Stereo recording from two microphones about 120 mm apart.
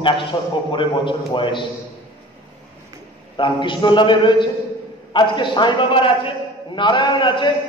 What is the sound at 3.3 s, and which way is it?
A man's voice, 40° left (ahead or behind).